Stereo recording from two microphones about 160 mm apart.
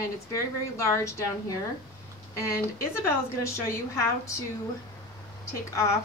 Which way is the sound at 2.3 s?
20° left (ahead or behind).